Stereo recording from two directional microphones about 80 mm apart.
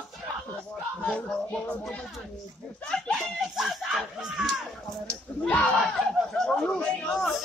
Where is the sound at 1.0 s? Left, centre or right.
Centre.